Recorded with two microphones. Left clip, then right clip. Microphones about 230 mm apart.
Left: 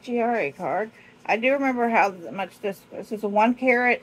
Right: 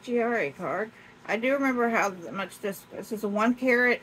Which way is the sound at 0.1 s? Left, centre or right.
Centre.